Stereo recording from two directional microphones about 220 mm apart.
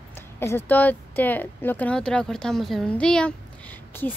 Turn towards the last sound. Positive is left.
turn(degrees=10)  # may be behind; listen again after turning